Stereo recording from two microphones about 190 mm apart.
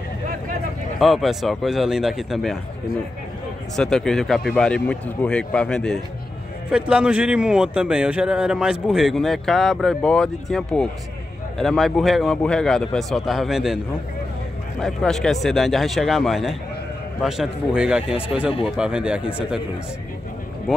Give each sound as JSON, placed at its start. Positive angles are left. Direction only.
{"t": 0.9, "sound": "a man's voice", "side_deg": 0}
{"t": 3.7, "sound": "a man's voice", "side_deg": 0}
{"t": 14.8, "sound": "a man's voice", "side_deg": 0}